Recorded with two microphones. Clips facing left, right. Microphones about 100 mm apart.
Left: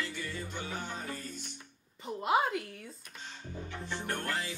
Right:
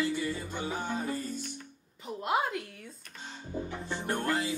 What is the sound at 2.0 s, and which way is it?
Speech, centre (ahead or behind).